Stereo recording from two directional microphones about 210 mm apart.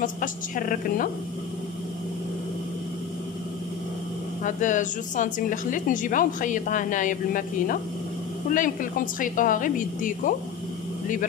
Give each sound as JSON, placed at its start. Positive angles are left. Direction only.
{"t": 0.0, "sound": "a woman's voice", "side_deg": 40}
{"t": 4.4, "sound": "a woman's voice", "side_deg": 35}